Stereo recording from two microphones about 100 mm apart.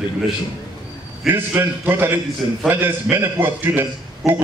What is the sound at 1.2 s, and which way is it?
A man's voice, 20° right (ahead or behind).